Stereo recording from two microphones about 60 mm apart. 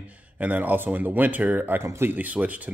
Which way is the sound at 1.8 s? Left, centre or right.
Right.